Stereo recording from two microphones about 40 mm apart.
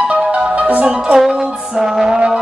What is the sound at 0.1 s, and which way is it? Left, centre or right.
Music, right.